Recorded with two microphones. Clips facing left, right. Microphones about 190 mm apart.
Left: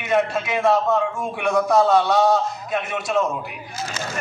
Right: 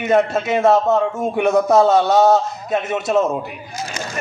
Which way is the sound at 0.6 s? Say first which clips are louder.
Right 4 dB; 25° right (ahead or behind).